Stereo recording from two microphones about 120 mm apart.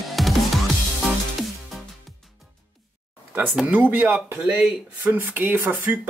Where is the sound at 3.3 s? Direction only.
10° right (ahead or behind).